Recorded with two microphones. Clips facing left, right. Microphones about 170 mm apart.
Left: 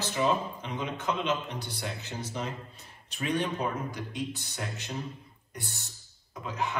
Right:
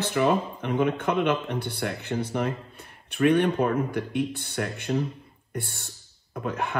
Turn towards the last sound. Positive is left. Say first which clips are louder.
# right 4 dB
turn(degrees=-55)  # may be behind; listen again after turning